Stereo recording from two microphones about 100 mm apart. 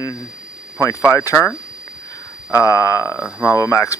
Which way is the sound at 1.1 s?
25° left (ahead or behind).